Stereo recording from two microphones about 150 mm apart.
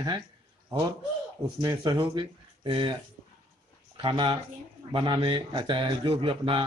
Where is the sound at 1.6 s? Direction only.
25° right (ahead or behind).